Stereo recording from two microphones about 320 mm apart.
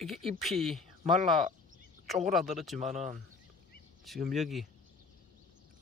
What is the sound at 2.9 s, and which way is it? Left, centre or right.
Speech, right.